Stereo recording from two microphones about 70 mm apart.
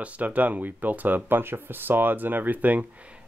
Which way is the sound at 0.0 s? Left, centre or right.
Right.